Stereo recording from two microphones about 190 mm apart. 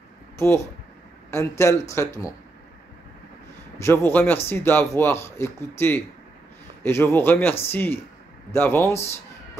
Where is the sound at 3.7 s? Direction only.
15° left (ahead or behind).